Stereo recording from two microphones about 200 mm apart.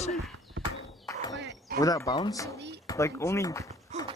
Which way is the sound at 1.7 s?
15° left (ahead or behind).